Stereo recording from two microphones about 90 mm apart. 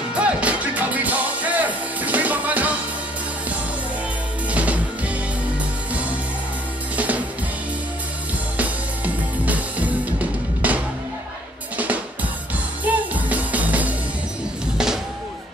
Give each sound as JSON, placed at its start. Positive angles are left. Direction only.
{"t": 0.1, "sound": "music", "side_deg": -15}
{"t": 4.5, "sound": "music", "side_deg": -15}
{"t": 7.0, "sound": "music", "side_deg": -15}
{"t": 8.5, "sound": "music", "side_deg": -15}
{"t": 11.7, "sound": "drum", "side_deg": -15}
{"t": 12.8, "sound": "music", "side_deg": -15}